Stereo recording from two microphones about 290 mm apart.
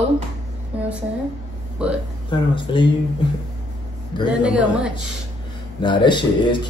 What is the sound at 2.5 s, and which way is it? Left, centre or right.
Speech, centre.